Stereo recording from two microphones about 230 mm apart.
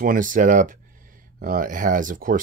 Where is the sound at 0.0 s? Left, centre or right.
Right.